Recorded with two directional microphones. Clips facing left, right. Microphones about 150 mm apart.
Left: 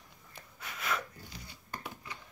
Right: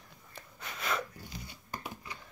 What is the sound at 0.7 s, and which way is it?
Snort, 30° right (ahead or behind).